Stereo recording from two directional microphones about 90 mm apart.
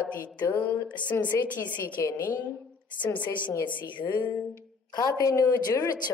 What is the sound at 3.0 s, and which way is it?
Speech, 15° left (ahead or behind).